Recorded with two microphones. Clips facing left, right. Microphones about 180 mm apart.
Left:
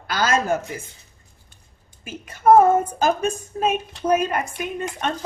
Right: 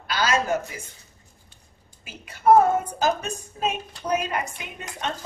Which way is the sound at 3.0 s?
50° left (ahead or behind).